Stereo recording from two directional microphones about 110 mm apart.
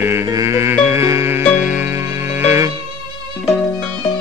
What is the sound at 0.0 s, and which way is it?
Music, 20° right (ahead or behind).